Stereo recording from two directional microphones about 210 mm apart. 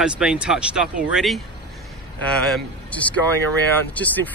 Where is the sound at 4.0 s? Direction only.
5° left (ahead or behind).